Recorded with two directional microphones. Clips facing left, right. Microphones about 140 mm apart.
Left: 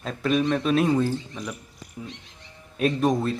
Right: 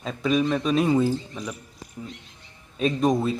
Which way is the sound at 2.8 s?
Centre (ahead or behind).